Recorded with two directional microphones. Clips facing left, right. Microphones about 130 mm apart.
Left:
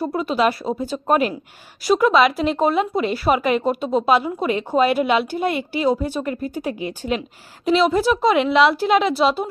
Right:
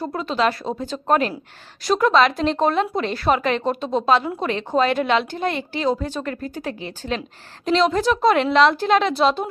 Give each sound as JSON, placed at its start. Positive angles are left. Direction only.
{"t": 0.0, "sound": "speech", "side_deg": 10}